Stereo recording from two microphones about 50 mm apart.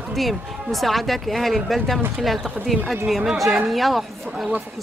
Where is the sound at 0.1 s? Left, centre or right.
Centre.